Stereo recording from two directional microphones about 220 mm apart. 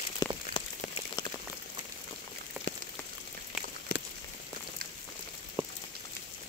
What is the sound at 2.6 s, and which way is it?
Rain on surface, 5° right (ahead or behind).